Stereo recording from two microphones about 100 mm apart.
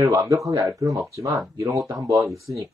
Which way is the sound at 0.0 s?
35° right (ahead or behind).